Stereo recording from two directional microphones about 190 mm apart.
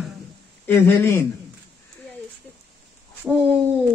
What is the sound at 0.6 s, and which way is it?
Speech, 10° left (ahead or behind).